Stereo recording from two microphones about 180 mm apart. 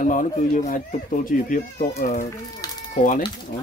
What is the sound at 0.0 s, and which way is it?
Speech, 45° left (ahead or behind).